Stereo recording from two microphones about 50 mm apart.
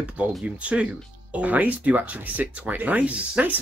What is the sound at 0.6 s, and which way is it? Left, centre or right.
Speech, right.